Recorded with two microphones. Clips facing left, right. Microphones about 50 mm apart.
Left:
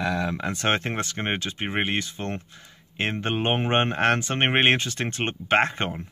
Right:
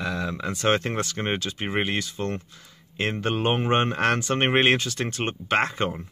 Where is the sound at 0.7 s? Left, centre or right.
Left.